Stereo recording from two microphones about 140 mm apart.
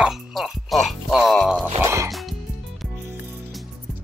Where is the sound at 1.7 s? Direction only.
20° right (ahead or behind).